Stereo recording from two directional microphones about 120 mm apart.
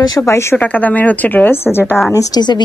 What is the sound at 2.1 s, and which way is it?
Speech, 30° left (ahead or behind).